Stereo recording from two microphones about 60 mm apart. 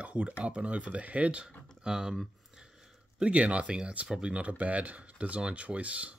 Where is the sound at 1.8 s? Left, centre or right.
Centre.